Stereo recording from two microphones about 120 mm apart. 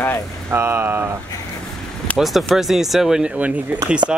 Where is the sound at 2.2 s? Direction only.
Centre (ahead or behind).